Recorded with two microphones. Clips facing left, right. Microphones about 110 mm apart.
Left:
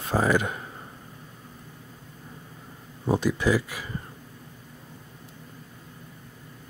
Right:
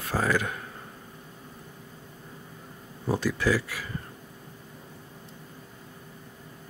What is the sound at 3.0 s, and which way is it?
Speech, 20° left (ahead or behind).